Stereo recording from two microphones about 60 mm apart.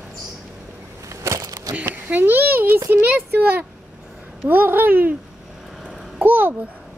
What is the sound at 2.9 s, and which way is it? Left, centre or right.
A child's voice, right.